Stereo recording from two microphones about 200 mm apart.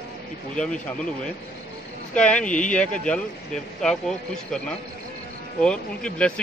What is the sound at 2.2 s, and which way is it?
Speech, 5° left (ahead or behind).